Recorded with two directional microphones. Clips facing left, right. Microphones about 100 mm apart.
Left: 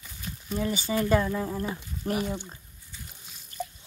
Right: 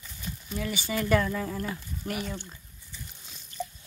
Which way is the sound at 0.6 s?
30° left (ahead or behind).